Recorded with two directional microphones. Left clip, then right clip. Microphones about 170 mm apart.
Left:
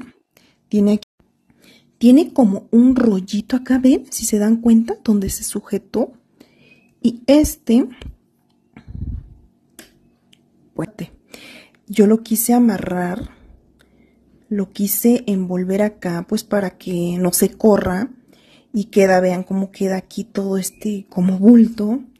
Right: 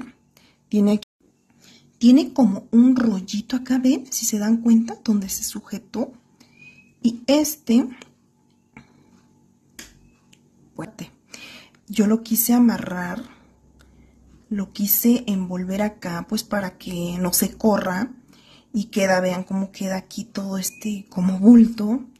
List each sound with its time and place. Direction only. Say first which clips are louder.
0.7 s speech: left 3 dB; 35° left (ahead or behind)
1.6 s speech: left 3 dB; 50° left (ahead or behind); by 8.1 s 30° left (ahead or behind)
8.8 s cat: left 1 dB; 25° left (ahead or behind)
10.3 s a sound: left 9 dB; 40° left (ahead or behind)
14.5 s speech: left 4 dB; 40° left (ahead or behind)